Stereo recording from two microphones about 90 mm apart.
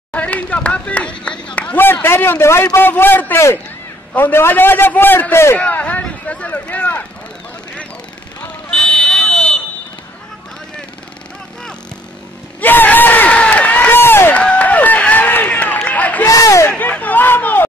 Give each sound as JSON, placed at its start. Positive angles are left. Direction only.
{"t": 0.1, "sound": "a man's voice", "side_deg": 15}
{"t": 5.6, "sound": "a sound", "side_deg": 15}
{"t": 8.6, "sound": "buzzer", "side_deg": 5}
{"t": 12.5, "sound": "crowd", "side_deg": 20}
{"t": 14.3, "sound": "run", "side_deg": 15}
{"t": 16.3, "sound": "a sound", "side_deg": 40}
{"t": 16.7, "sound": "hubbub", "side_deg": 15}